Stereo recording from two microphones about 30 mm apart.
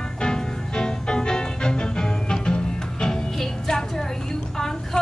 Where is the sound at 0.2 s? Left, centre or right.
Left.